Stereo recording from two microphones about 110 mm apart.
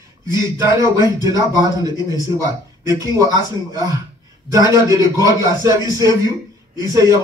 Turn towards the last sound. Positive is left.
turn(degrees=-35)  # may be behind; listen again after turning